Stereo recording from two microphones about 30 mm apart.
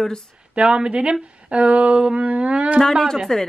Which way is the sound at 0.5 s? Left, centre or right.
Right.